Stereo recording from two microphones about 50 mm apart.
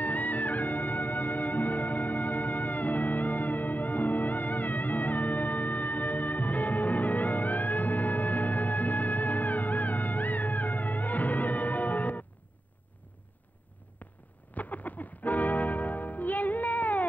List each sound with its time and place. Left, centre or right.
0.0 s music: left
14.5 s music: left